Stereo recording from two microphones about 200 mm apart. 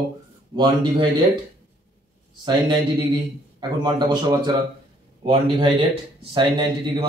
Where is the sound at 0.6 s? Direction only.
20° right (ahead or behind).